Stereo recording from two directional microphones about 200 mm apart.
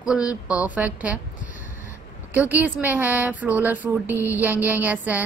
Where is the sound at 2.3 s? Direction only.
10° right (ahead or behind).